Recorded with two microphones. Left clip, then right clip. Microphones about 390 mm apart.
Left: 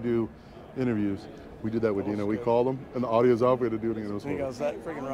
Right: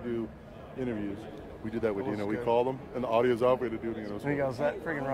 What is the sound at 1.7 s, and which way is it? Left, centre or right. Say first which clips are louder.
Speech: left 4 dB; left.